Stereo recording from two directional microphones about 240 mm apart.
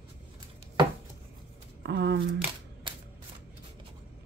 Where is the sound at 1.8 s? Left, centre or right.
Right.